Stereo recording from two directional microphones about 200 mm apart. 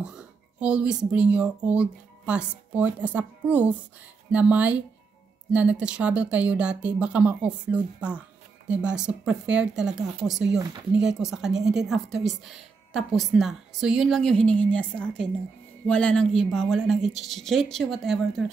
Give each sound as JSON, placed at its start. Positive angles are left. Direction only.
{"t": 0.0, "sound": "a woman's voice", "side_deg": -5}
{"t": 10.6, "sound": "speech", "side_deg": -20}
{"t": 11.0, "sound": "a woman's voice", "side_deg": -5}